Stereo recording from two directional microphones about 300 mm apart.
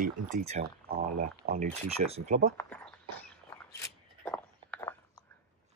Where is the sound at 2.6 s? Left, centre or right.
Centre.